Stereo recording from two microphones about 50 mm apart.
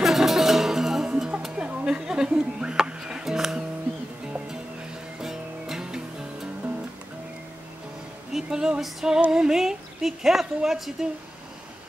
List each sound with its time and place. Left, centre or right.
0.0 s music: centre
1.6 s a sound: right
1.9 s music: centre
5.2 s music: centre
8.3 s a woman's voice: centre